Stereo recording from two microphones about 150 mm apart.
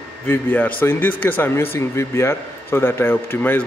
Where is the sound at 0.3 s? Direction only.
10° left (ahead or behind).